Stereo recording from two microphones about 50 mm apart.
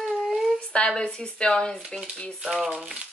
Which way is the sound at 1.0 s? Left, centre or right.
Centre.